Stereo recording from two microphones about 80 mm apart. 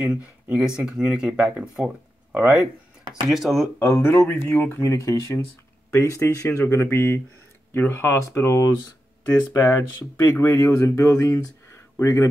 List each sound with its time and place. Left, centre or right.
0.0 s speech: centre
2.5 s a sound: right
3.3 s speech: centre
3.8 s speech: left